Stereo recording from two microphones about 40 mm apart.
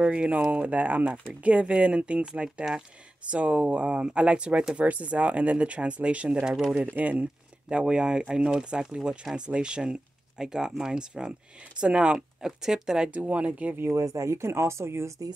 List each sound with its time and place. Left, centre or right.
0.0 s speech: right
4.7 s speech: right
6.4 s speech: centre
6.8 s speech: right
7.7 s speech: right
12.4 s speech: centre
13.1 s speech: right
14.5 s speech: right